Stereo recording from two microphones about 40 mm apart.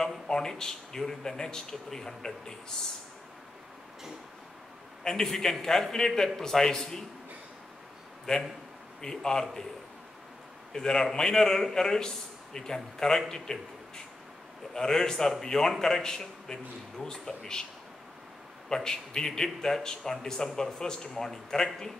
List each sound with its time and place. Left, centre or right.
0.3 s speech: centre
5.0 s speech: centre
9.0 s speech: centre
10.7 s a man's voice: centre
18.8 s speech: centre